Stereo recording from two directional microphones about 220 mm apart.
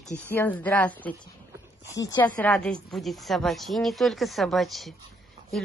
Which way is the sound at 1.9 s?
15° left (ahead or behind).